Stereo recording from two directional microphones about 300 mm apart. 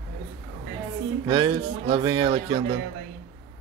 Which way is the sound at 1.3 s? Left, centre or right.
Centre.